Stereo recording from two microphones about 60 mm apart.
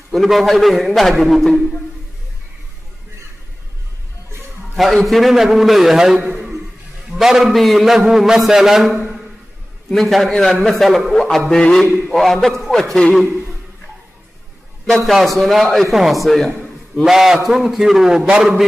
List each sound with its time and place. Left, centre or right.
0.1 s a man's voice: centre
4.7 s a man's voice: centre
6.2 s a sound: centre
7.2 s a man's voice: centre
10.3 s a man's voice: centre
10.6 s a man's voice: centre
11.8 s a man's voice: centre
14.9 s a man's voice: centre
17.0 s a man's voice: centre